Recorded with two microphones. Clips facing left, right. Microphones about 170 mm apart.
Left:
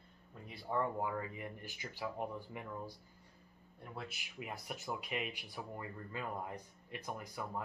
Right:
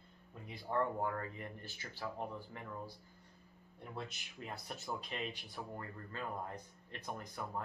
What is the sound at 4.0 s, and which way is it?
Speech, 10° left (ahead or behind).